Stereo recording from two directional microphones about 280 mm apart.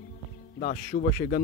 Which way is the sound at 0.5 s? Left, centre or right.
Left.